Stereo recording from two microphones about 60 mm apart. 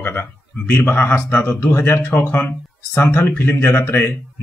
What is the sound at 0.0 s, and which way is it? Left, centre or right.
Speech, left.